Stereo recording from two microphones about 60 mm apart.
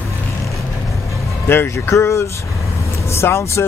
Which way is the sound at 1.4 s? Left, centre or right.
Left.